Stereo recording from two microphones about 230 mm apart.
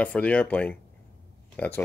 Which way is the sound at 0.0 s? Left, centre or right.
Centre.